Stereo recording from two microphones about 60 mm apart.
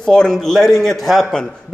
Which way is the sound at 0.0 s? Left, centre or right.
Centre.